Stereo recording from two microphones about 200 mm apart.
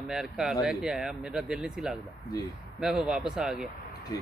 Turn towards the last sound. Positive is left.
turn(degrees=-5)  # may be behind; listen again after turning